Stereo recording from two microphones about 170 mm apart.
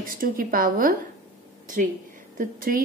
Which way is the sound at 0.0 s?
55° right (ahead or behind).